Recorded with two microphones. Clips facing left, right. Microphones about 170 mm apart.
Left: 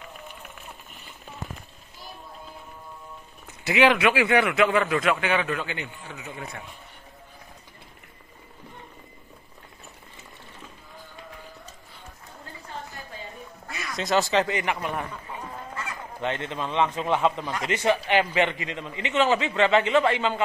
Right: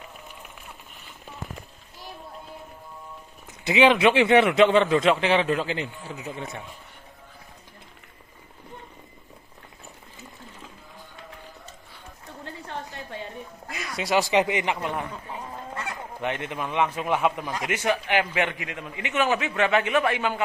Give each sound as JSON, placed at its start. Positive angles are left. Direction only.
{"t": 3.6, "sound": "a man's voice", "side_deg": -20}
{"t": 13.9, "sound": "a man's voice", "side_deg": -10}
{"t": 15.7, "sound": "goose", "side_deg": -65}
{"t": 16.2, "sound": "a man's voice", "side_deg": -15}